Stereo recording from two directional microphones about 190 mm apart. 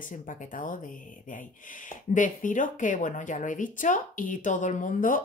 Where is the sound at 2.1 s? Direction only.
45° left (ahead or behind).